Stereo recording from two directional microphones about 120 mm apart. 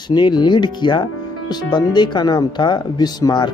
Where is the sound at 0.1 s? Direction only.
35° left (ahead or behind).